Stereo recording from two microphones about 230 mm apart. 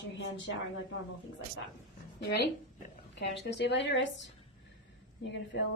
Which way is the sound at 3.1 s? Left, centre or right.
Left.